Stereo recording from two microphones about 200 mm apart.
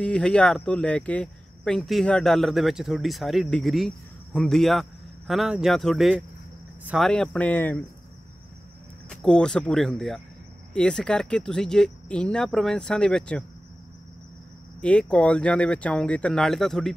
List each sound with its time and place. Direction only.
0.0 s speech: 5° left (ahead or behind)
9.1 s speech: 5° left (ahead or behind)
14.8 s speech: 5° left (ahead or behind)